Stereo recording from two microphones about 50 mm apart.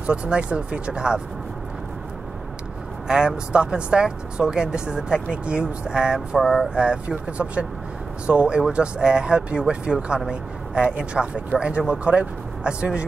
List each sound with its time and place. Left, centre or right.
0.0 s speech: right
3.1 s speech: centre
6.7 s speech: right